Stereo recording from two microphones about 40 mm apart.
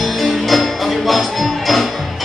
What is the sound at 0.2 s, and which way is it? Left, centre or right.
Music, centre.